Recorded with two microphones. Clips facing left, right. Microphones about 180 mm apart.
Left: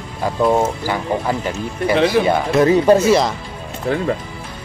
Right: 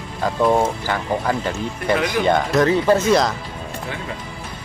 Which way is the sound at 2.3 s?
5° left (ahead or behind).